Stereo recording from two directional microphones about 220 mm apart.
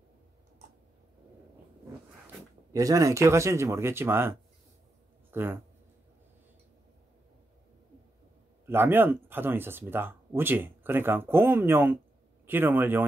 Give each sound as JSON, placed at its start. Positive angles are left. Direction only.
{"t": 2.7, "sound": "speech", "side_deg": -15}
{"t": 8.6, "sound": "speech", "side_deg": -10}